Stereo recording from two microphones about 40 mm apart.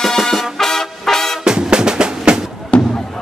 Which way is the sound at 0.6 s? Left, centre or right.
Centre.